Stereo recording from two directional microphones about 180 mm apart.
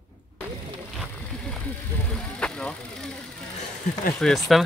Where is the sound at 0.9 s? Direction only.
5° left (ahead or behind).